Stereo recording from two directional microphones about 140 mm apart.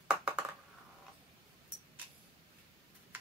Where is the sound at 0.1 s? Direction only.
10° right (ahead or behind).